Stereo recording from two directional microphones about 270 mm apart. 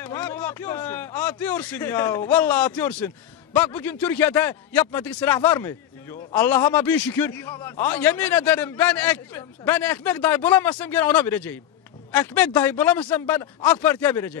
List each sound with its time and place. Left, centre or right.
0.0 s a man's voice: centre